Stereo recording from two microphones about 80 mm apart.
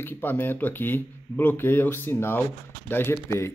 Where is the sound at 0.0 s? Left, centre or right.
Left.